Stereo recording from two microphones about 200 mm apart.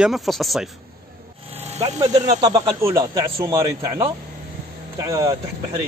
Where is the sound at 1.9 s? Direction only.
20° right (ahead or behind).